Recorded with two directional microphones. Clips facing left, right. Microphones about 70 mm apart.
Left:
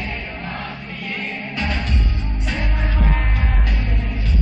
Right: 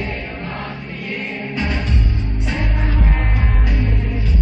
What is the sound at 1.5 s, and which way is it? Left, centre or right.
Music, centre.